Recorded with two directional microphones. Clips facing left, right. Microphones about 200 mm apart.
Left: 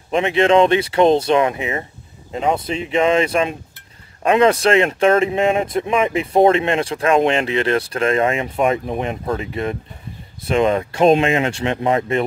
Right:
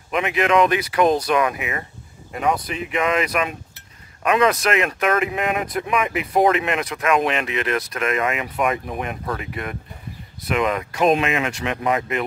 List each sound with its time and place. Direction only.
0.1 s speech: 30° left (ahead or behind)